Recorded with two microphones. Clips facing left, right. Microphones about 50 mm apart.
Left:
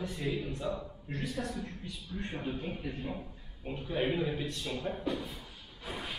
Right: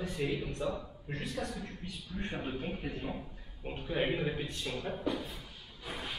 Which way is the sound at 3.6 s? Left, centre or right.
Centre.